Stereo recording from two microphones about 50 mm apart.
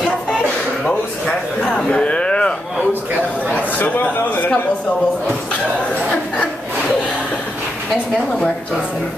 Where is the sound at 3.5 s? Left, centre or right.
Left.